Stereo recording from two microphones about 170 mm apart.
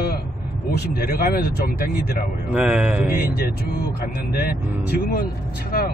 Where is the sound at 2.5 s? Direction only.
5° right (ahead or behind).